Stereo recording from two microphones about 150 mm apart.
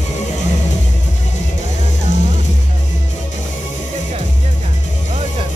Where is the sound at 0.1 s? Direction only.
50° left (ahead or behind).